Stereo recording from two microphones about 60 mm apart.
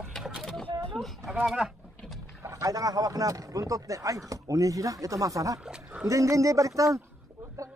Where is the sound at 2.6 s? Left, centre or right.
Right.